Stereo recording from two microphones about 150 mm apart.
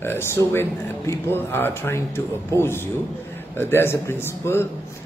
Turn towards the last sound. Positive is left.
turn(degrees=15)  # may be behind; listen again after turning